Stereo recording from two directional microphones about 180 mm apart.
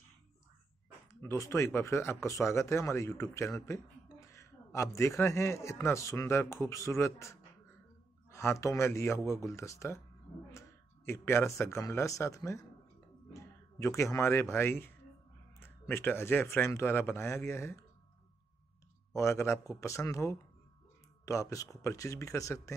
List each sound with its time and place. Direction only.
1.2 s speech: 15° left (ahead or behind)
11.1 s speech: 15° left (ahead or behind)
19.1 s speech: 15° left (ahead or behind)